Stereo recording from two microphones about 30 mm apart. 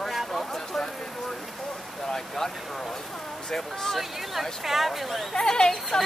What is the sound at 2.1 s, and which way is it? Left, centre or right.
Vehicle, centre.